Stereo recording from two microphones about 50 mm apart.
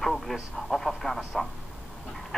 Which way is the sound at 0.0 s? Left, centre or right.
Centre.